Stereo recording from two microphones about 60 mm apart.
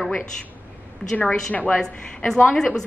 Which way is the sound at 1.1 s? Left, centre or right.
Left.